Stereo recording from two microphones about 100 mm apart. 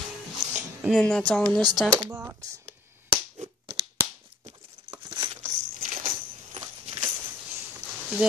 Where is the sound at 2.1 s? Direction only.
20° right (ahead or behind).